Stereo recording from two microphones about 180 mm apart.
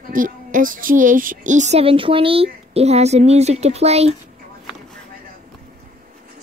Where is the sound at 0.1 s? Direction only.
50° right (ahead or behind).